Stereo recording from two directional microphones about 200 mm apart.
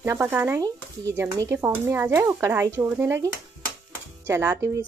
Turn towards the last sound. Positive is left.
turn(degrees=-15)  # may be behind; listen again after turning